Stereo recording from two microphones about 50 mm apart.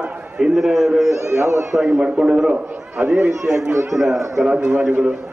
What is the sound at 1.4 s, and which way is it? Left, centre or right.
Speech, right.